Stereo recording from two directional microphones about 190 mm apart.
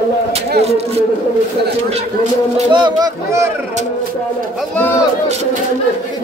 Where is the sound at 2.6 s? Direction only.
20° right (ahead or behind).